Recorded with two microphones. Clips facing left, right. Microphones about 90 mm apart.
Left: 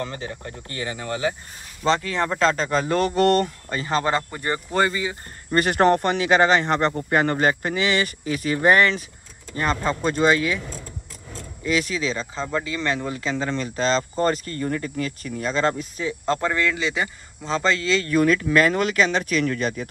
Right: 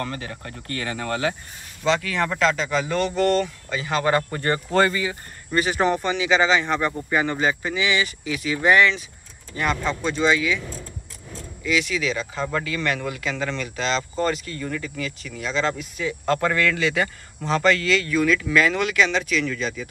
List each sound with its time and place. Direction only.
0.0 s speech: 20° left (ahead or behind)
2.0 s speech: 30° left (ahead or behind); by 3.1 s 45° left (ahead or behind)
3.2 s speech: 60° left (ahead or behind)
3.7 s speech: 35° left (ahead or behind)
4.3 s speech: 15° left (ahead or behind)
5.5 s speech: 55° left (ahead or behind)
11.6 s speech: 40° left (ahead or behind)
15.7 s speech: 30° left (ahead or behind)
18.1 s speech: 45° left (ahead or behind)